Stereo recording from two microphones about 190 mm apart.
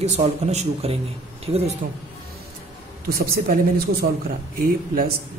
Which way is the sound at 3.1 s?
50° right (ahead or behind).